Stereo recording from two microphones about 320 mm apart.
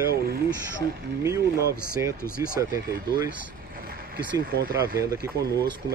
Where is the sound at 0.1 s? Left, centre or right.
Right.